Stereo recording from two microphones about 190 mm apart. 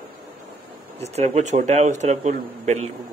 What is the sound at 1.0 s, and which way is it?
A man's voice, 35° right (ahead or behind).